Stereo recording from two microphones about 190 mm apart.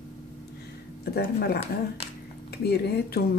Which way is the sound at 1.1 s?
55° left (ahead or behind).